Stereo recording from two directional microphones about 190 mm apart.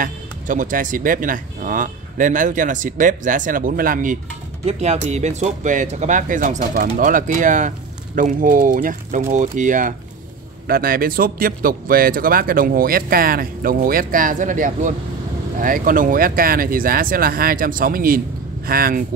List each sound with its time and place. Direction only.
0.0 s speech: 45° right (ahead or behind)
4.6 s speech: 35° right (ahead or behind); by 19.0 s 50° right (ahead or behind)